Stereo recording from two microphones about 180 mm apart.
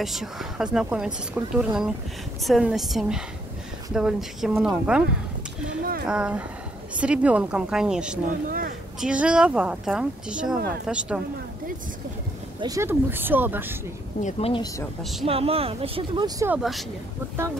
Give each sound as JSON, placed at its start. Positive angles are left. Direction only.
{"t": 0.0, "sound": "a woman's voice", "side_deg": 0}
{"t": 6.0, "sound": "a woman's voice", "side_deg": -5}
{"t": 8.5, "sound": "a sound", "side_deg": -50}
{"t": 9.0, "sound": "a woman's voice", "side_deg": -5}
{"t": 12.5, "sound": "speech", "side_deg": -20}
{"t": 14.2, "sound": "speech", "side_deg": 35}
{"t": 15.2, "sound": "speech", "side_deg": -30}
{"t": 16.3, "sound": "a woman's voice", "side_deg": -10}